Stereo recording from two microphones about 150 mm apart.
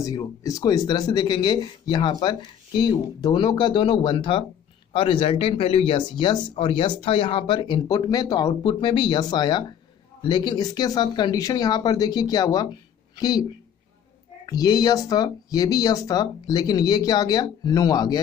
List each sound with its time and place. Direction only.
0.0 s speech: 20° left (ahead or behind)